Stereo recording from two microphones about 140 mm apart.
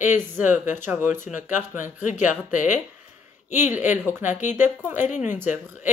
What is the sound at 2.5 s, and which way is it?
Speech, 65° left (ahead or behind).